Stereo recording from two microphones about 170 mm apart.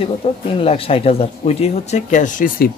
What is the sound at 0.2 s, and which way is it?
Speech, 35° left (ahead or behind).